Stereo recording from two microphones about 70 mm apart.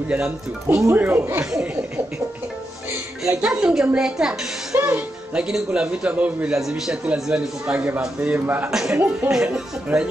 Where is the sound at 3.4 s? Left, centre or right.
Centre.